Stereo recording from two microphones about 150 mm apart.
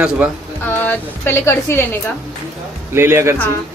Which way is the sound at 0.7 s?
15° left (ahead or behind).